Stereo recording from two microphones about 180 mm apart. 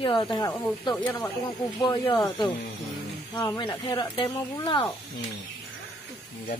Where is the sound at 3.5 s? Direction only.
25° left (ahead or behind).